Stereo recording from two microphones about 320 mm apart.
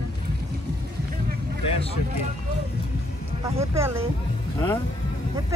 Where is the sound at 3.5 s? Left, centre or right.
Centre.